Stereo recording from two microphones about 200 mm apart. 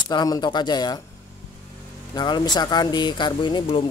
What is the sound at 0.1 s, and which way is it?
Speech, 20° left (ahead or behind).